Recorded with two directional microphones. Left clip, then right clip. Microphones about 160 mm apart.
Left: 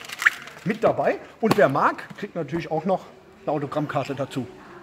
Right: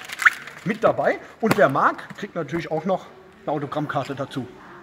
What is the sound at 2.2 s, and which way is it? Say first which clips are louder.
A man's voice: right 1 dB; centre (ahead or behind).